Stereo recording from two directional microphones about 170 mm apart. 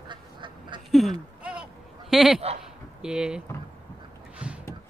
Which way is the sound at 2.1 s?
Centre (ahead or behind).